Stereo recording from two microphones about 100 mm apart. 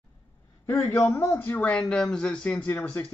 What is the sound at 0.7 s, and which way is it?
Speech, 15° left (ahead or behind).